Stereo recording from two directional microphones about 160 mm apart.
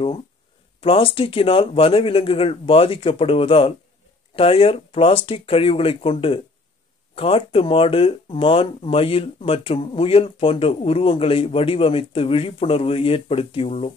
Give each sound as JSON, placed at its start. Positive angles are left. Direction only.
{"t": 0.7, "sound": "speech", "side_deg": 35}